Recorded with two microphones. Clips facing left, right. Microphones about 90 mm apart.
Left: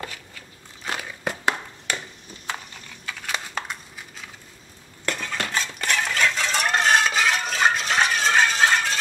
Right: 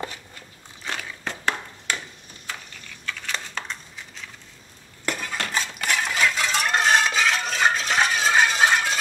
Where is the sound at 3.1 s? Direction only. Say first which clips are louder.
Left 1 dB; 10° left (ahead or behind).